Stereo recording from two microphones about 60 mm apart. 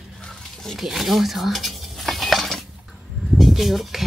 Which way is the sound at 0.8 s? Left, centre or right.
Centre.